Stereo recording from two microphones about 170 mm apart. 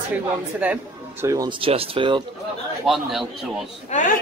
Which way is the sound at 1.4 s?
30° right (ahead or behind).